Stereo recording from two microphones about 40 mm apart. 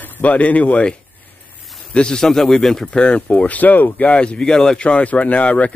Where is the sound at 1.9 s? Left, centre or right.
Centre.